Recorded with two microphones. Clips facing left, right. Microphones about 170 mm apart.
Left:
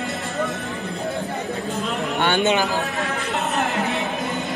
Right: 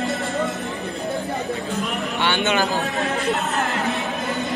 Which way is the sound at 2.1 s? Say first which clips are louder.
Left 3 dB; 45° left (ahead or behind).